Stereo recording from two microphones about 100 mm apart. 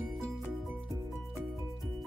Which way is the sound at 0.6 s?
Centre (ahead or behind).